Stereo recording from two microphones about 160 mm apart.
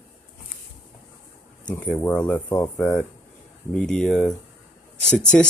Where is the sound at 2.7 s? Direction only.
5° left (ahead or behind).